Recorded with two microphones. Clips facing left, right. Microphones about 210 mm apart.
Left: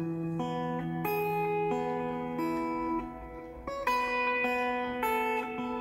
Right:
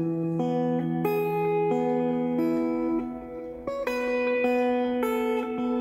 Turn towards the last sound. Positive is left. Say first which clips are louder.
# right 8 dB
turn(degrees=-45)  # may be behind; listen again after turning